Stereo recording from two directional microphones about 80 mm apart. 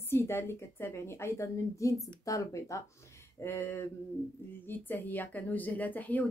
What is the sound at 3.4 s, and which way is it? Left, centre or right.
Speech, left.